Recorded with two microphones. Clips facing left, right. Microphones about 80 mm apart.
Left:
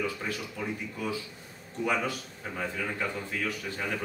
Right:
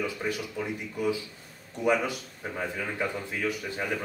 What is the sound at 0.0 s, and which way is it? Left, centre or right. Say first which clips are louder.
Speech: right 2 dB; centre.